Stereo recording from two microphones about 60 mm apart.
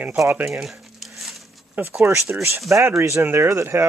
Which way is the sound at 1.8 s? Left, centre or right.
Right.